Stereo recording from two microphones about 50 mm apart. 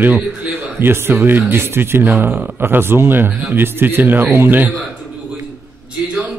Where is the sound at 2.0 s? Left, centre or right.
Right.